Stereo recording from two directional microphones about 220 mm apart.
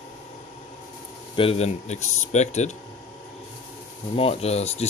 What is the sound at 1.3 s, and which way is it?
Speech, 25° left (ahead or behind).